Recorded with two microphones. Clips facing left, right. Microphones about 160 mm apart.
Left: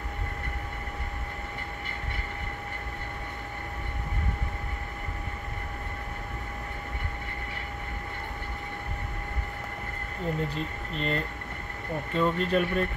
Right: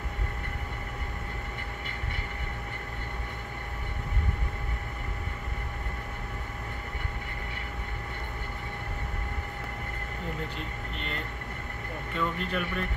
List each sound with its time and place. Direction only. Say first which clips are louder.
10.5 s speech: left 4 dB; 35° left (ahead or behind)
12.2 s speech: left 6 dB; 30° left (ahead or behind)